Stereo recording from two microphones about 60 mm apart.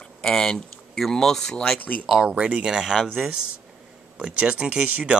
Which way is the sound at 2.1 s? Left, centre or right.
Centre.